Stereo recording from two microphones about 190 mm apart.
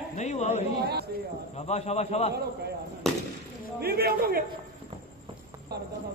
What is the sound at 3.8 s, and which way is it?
Speech, 55° right (ahead or behind).